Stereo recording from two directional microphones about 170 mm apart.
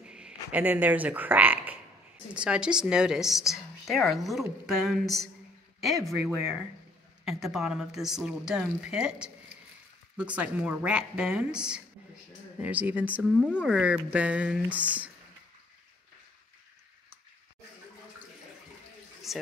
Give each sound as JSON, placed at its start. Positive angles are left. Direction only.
{"t": 0.0, "sound": "a woman's voice", "side_deg": -5}
{"t": 13.3, "sound": "speech", "side_deg": 10}
{"t": 13.6, "sound": "a woman's voice", "side_deg": -5}
{"t": 19.3, "sound": "a sound", "side_deg": 0}